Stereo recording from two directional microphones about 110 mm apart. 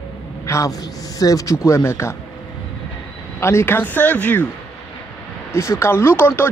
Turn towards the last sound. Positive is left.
turn(degrees=20)  # may be behind; listen again after turning